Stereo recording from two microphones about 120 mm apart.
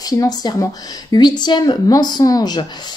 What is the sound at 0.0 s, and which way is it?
Speech, 30° left (ahead or behind).